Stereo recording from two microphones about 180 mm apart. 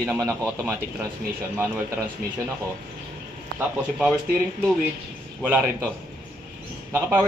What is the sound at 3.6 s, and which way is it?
Speech, 5° right (ahead or behind).